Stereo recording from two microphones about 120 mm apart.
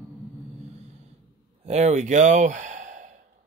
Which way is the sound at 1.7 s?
70° right (ahead or behind).